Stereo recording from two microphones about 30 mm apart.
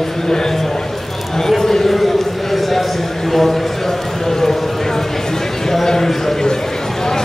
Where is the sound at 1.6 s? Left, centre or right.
Centre.